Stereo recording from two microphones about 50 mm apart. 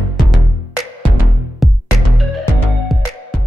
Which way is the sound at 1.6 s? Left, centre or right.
Centre.